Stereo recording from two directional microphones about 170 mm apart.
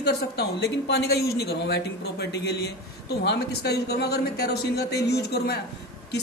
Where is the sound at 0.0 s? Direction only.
75° left (ahead or behind).